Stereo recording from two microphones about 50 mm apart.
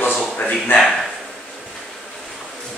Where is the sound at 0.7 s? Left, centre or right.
Centre.